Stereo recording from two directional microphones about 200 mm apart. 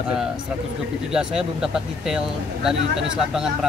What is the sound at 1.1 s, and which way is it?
Speech, 5° right (ahead or behind).